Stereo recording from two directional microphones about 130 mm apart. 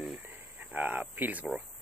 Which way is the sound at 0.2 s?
15° right (ahead or behind).